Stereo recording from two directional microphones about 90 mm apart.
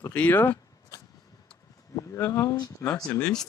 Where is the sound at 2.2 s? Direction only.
30° left (ahead or behind).